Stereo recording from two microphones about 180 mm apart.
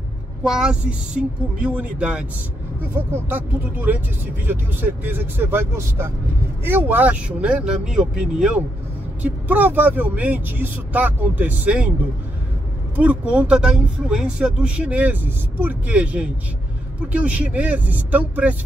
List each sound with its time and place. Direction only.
0.4 s speech: 5° right (ahead or behind)
12.9 s speech: 10° right (ahead or behind)